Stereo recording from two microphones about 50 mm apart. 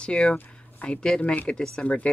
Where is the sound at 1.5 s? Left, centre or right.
Left.